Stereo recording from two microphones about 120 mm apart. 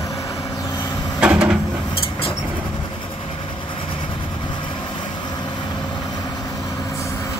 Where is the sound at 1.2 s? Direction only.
10° right (ahead or behind).